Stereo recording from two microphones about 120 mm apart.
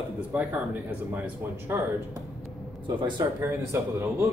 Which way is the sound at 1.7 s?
20° right (ahead or behind).